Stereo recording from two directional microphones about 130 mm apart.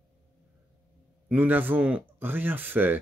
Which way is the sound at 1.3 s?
15° right (ahead or behind).